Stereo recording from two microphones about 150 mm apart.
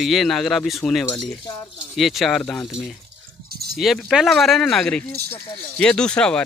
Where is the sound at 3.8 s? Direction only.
Centre (ahead or behind).